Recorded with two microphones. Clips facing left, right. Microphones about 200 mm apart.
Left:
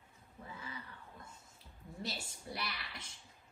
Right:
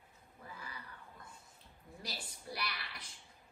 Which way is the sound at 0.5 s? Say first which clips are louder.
Left 2 dB; 25° left (ahead or behind).